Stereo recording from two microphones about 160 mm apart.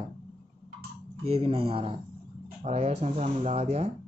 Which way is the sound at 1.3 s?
35° right (ahead or behind).